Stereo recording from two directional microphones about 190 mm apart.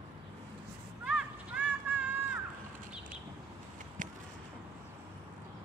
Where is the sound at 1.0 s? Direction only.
5° right (ahead or behind).